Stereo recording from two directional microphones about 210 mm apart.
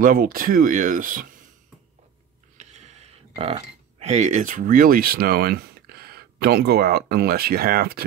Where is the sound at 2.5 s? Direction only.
35° right (ahead or behind).